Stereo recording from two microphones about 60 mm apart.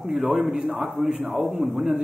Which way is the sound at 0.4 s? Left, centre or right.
Centre.